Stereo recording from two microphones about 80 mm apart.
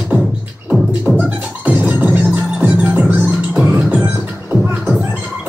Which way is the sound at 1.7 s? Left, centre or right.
Right.